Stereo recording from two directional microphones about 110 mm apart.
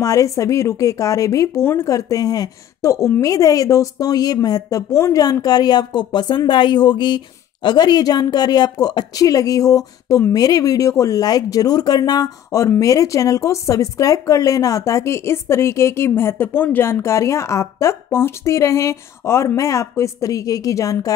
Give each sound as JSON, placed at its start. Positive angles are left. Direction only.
{"t": 0.0, "sound": "speech", "side_deg": 30}